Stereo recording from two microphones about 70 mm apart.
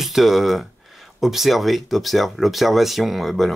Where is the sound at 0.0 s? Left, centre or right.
Centre.